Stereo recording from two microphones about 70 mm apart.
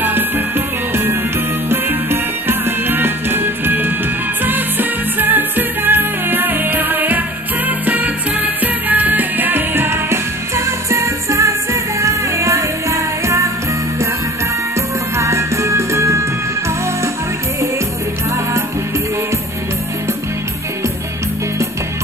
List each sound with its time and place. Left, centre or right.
1.7 s music: right
15.1 s music: right